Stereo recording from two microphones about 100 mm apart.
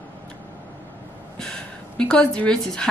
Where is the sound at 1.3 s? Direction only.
10° left (ahead or behind).